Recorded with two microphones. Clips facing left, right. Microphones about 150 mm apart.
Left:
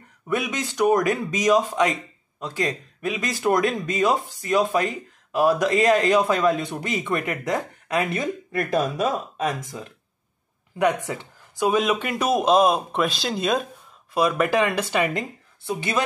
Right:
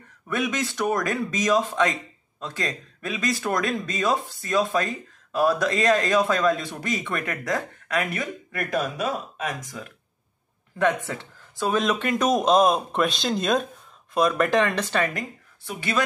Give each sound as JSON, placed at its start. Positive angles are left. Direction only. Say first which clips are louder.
{"t": 0.3, "sound": "speech", "louder": "left 1 dB", "side_deg": 15}
{"t": 10.8, "sound": "speech", "louder": "left 1 dB", "side_deg": 15}
{"t": 15.1, "sound": "a woman's voice", "louder": "left 4 dB", "side_deg": 25}